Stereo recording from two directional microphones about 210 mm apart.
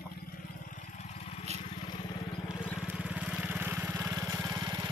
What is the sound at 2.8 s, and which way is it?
Vehicle, 5° right (ahead or behind).